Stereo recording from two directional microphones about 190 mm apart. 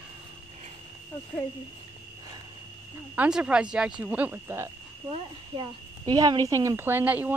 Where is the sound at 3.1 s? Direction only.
5° right (ahead or behind).